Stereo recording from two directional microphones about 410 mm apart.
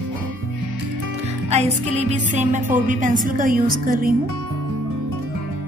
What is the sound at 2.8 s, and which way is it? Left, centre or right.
A woman's voice, centre.